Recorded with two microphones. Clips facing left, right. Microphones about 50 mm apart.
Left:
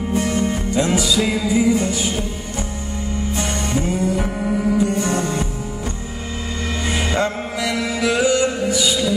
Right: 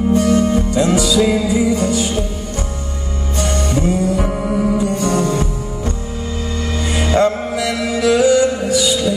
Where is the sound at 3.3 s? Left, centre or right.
Centre.